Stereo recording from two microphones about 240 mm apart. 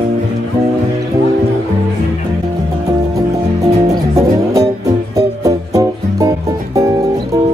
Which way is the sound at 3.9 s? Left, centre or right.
Centre.